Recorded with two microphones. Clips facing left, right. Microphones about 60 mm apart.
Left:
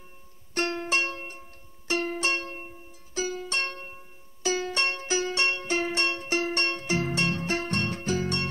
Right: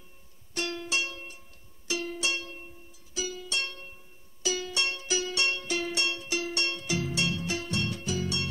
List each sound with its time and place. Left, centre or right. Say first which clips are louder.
0.6 s music: left 5 dB; left